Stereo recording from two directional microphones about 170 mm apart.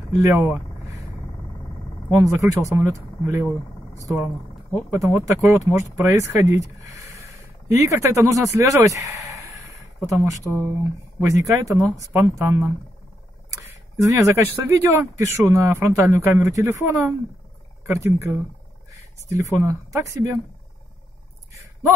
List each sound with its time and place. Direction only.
0.1 s speech: 15° right (ahead or behind)
2.1 s speech: 15° right (ahead or behind)
4.9 s speech: 20° right (ahead or behind)